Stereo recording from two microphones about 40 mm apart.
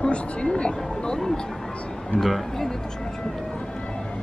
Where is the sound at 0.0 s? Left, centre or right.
Left.